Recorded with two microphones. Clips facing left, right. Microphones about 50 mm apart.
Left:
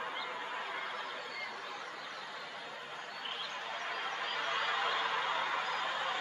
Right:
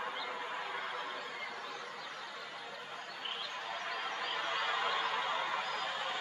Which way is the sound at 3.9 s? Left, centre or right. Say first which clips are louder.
Left 1 dB; centre.